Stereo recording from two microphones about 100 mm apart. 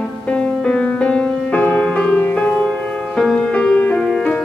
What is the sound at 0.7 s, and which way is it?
Music, 10° left (ahead or behind).